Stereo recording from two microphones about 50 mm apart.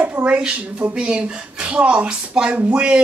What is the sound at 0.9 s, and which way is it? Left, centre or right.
Speech, right.